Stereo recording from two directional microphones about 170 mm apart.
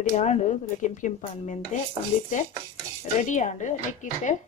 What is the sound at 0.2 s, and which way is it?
Speech, 45° left (ahead or behind).